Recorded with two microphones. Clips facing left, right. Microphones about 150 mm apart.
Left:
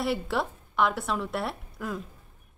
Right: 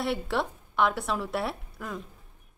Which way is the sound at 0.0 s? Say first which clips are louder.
Left 1 dB; centre (ahead or behind).